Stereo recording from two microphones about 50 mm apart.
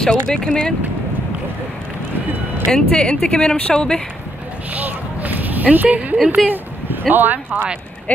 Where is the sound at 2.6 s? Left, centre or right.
Centre.